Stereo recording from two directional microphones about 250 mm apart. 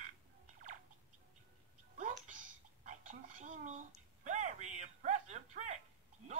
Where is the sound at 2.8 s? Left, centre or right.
Right.